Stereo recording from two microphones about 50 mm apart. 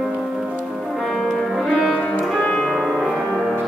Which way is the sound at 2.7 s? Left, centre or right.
Centre.